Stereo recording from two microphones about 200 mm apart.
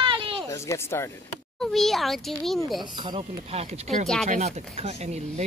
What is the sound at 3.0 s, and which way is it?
Speech, 25° right (ahead or behind).